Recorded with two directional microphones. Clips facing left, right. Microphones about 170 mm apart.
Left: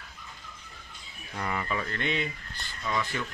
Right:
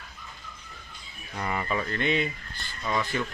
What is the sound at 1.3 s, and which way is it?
Speech, 10° right (ahead or behind).